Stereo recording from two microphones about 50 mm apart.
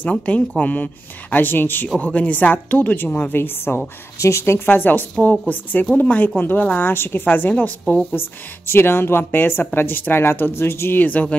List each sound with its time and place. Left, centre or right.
0.0 s speech: left
1.3 s speech: left
2.0 s speech: left
3.3 s a woman's voice: left
4.2 s a woman's voice: left
4.6 s speech: left
6.9 s a woman's voice: left
8.1 s a woman's voice: left
11.0 s speech: left